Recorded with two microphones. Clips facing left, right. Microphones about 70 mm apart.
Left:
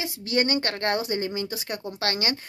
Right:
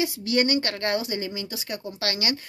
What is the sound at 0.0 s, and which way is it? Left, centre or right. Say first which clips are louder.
A woman's voice: right 2 dB; left.